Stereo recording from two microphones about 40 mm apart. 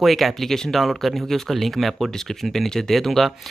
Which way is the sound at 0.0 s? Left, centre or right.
Centre.